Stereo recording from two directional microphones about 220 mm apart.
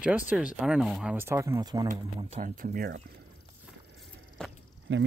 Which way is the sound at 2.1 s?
30° right (ahead or behind).